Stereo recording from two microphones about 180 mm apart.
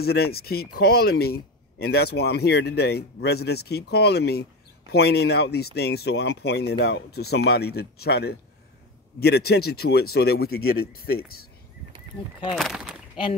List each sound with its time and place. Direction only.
0.0 s speech: 60° left (ahead or behind)
12.5 s speech: centre (ahead or behind)